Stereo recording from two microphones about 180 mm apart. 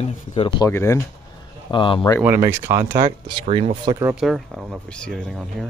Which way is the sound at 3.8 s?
15° right (ahead or behind).